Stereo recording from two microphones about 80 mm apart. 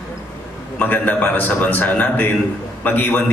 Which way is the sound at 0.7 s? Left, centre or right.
Left.